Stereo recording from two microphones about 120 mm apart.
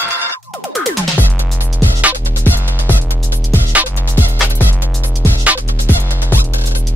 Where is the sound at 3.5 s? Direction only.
15° right (ahead or behind).